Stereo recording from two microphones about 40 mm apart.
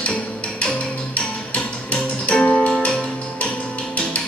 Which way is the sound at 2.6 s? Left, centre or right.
Centre.